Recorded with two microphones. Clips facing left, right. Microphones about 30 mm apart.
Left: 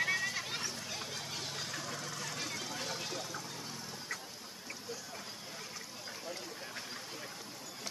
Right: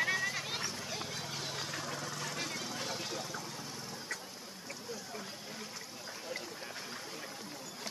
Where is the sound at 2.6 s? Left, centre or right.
Centre.